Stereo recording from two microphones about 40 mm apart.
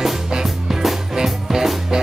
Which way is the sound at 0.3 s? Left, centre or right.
Centre.